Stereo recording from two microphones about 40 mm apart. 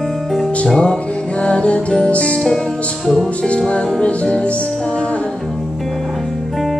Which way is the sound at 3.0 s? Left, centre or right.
Centre.